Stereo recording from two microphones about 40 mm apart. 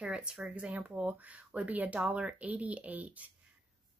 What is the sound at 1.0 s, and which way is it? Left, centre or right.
Speech, right.